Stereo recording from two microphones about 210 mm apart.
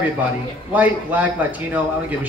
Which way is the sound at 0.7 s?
10° right (ahead or behind).